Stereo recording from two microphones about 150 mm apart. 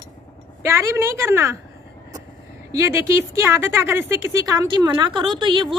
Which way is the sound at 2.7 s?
20° right (ahead or behind).